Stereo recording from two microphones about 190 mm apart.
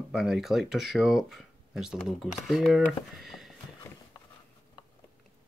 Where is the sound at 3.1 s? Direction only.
Centre (ahead or behind).